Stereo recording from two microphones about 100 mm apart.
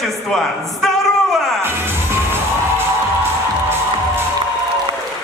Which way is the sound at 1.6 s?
25° right (ahead or behind).